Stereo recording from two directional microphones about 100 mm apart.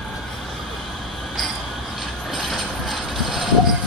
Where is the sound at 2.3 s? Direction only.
Centre (ahead or behind).